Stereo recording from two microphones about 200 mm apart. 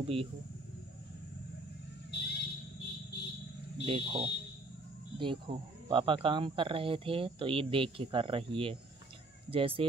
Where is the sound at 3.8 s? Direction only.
25° right (ahead or behind).